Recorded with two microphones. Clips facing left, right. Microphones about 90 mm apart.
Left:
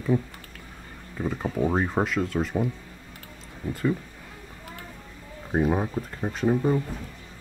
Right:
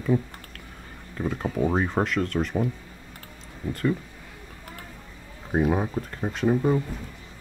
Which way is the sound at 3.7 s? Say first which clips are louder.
Even; 5° left (ahead or behind).